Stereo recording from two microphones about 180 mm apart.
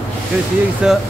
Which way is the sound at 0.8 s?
5° right (ahead or behind).